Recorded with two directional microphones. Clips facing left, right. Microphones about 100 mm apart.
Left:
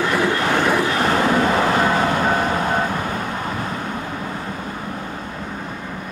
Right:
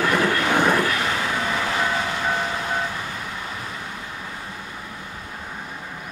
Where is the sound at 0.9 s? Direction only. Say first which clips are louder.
Left 7 dB; 45° left (ahead or behind).